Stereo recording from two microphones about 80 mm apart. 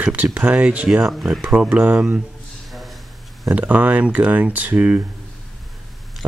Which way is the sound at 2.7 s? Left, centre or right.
Centre.